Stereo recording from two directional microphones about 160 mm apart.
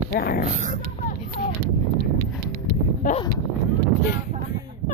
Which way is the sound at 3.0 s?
60° left (ahead or behind).